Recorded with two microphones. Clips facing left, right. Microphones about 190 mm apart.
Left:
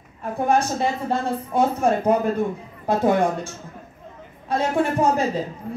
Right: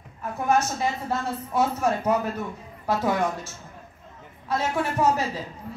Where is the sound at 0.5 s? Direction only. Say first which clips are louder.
Left 2 dB; 30° left (ahead or behind).